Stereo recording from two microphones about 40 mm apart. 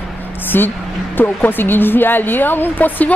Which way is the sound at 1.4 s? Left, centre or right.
Left.